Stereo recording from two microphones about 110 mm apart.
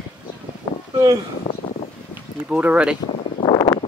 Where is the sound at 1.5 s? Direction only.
60° left (ahead or behind).